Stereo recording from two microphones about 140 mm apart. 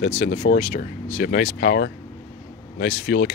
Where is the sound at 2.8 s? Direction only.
90° left.